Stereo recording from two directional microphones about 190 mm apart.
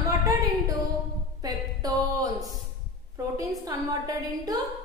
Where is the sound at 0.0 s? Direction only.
20° right (ahead or behind).